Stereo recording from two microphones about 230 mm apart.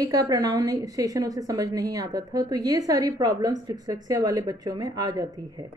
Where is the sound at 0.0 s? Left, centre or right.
Centre.